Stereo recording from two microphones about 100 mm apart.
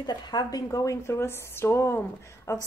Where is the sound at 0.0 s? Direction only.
45° left (ahead or behind).